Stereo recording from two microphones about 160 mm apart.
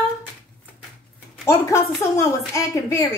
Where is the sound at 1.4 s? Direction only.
20° left (ahead or behind).